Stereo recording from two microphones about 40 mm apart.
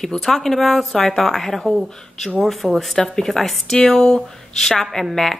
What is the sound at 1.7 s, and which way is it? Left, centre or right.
Speech, centre.